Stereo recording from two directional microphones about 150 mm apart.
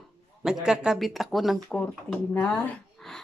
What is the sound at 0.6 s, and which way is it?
Speech, 5° right (ahead or behind).